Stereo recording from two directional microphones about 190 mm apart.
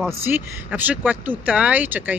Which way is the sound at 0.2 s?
10° right (ahead or behind).